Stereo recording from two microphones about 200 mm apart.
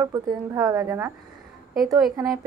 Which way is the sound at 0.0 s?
15° right (ahead or behind).